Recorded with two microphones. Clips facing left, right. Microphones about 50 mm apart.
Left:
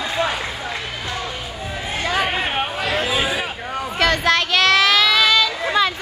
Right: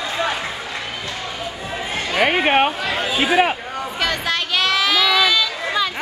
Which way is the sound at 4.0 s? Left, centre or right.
Centre.